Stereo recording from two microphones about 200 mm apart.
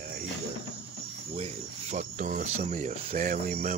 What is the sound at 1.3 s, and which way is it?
Cricket, 30° right (ahead or behind).